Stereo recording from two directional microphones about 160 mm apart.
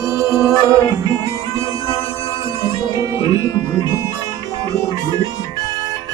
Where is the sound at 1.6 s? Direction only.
20° right (ahead or behind).